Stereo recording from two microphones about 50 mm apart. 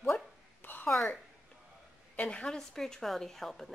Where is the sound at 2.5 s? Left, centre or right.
Centre.